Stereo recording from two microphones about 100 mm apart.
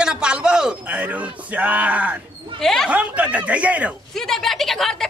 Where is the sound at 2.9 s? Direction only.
15° right (ahead or behind).